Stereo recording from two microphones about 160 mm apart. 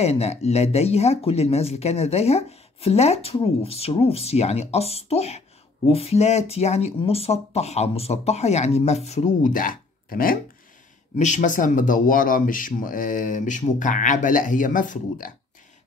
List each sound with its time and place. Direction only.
0.0 s speech: 40° left (ahead or behind); by 10.4 s 65° left (ahead or behind)
11.1 s speech: 50° left (ahead or behind)